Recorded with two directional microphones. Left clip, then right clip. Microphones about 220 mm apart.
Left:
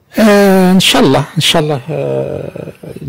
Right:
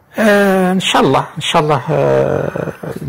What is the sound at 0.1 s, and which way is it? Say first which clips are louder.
Speech: left 3 dB; 45° left (ahead or behind).